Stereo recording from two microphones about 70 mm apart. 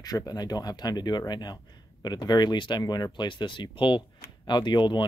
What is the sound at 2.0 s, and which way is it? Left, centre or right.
Speech, left.